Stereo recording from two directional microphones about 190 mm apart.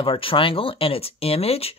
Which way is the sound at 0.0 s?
30° left (ahead or behind).